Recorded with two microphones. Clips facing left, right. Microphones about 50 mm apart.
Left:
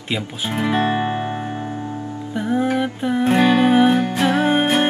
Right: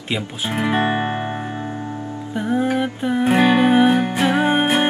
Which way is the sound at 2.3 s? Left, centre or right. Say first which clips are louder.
Even; centre.